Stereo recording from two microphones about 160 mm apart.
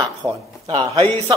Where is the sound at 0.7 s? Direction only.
30° right (ahead or behind).